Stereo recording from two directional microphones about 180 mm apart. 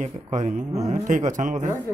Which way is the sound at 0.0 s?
45° right (ahead or behind).